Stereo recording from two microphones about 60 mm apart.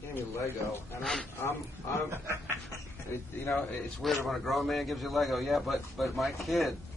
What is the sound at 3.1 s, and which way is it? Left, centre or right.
Speech, left.